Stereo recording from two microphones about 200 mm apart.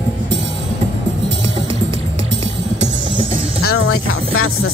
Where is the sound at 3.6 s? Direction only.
90° left.